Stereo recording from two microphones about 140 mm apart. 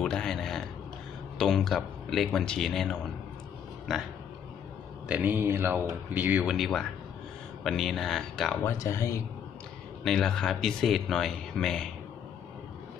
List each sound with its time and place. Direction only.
0.0 s a sound: 5° left (ahead or behind)
1.4 s speech: 5° left (ahead or behind)
5.0 s speech: 10° right (ahead or behind)
8.6 s speech: 20° left (ahead or behind)
10.0 s speech: 5° left (ahead or behind)